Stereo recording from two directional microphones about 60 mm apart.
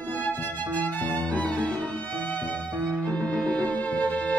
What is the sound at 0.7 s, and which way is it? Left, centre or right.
Music, left.